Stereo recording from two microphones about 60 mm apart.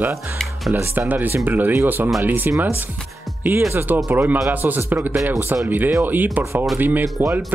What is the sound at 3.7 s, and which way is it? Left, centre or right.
Speech, right.